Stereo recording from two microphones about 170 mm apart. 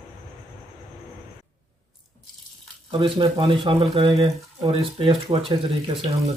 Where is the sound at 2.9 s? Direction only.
30° right (ahead or behind).